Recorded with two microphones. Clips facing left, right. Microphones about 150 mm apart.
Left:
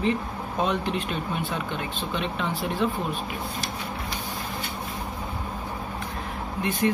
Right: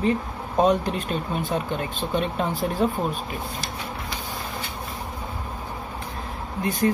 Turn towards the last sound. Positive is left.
turn(degrees=-40)  # may be behind; listen again after turning